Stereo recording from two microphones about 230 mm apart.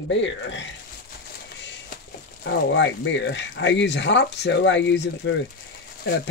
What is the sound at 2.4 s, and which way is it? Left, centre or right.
Speech, left.